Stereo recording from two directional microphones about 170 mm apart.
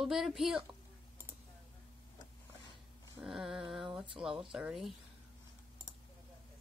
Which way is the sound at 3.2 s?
5° right (ahead or behind).